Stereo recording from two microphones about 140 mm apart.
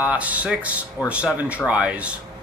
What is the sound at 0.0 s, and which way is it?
Speech, 10° right (ahead or behind).